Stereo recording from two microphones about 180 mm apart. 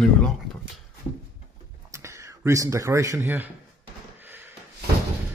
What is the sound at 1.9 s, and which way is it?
Speech, 15° right (ahead or behind).